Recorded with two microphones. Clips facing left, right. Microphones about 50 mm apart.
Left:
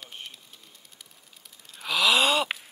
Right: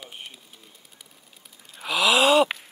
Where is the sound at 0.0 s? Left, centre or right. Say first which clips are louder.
Right 1 dB; centre.